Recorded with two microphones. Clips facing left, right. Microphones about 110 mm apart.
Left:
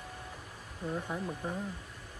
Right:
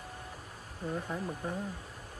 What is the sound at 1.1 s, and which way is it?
Speech, centre (ahead or behind).